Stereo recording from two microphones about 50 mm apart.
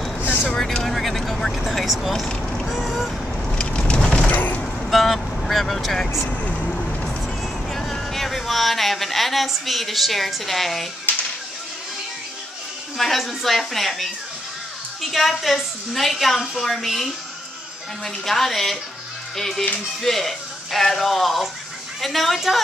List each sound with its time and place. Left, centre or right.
0.8 s vehicle: centre
2.2 s vehicle: centre
2.7 s a woman's voice: centre
3.5 s vehicle: left
4.3 s a sound: left
4.8 s speech: centre
6.3 s speech: left
6.7 s a sound: centre
7.7 s speech: centre
12.9 s a woman's voice: centre